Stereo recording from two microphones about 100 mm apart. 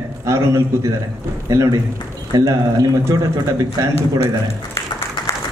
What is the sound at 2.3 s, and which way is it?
A man's voice, 35° right (ahead or behind).